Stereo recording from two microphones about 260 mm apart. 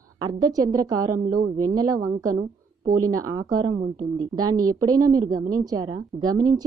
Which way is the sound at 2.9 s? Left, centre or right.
Right.